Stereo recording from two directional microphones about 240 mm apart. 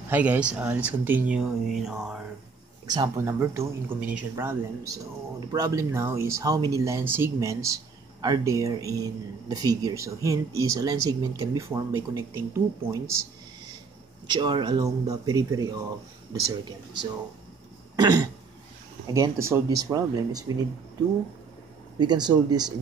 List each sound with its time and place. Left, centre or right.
0.1 s speech: centre
2.9 s speech: centre
14.2 s speech: centre
21.9 s speech: centre